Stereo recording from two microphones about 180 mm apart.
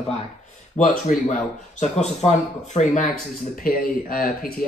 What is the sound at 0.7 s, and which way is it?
Speech, 40° left (ahead or behind).